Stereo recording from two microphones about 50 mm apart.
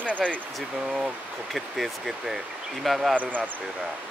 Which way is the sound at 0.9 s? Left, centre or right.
Centre.